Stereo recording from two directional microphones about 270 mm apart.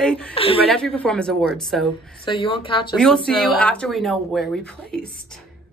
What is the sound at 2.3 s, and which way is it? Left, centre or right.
Speech, centre.